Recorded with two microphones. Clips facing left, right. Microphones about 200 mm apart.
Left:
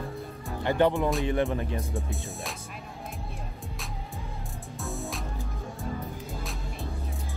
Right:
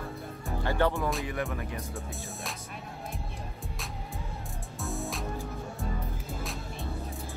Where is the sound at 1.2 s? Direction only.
30° left (ahead or behind).